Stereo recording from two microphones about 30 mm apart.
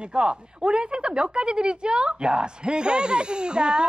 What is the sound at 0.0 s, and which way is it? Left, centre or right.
Speech, right.